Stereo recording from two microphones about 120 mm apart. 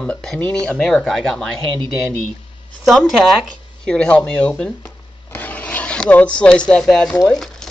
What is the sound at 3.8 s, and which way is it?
Speech, 10° left (ahead or behind).